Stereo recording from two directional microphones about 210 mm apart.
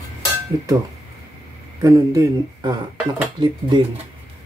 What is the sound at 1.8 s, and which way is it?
Speech, 15° right (ahead or behind).